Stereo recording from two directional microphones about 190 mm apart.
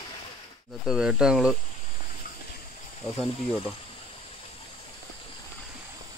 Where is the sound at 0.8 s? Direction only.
5° right (ahead or behind).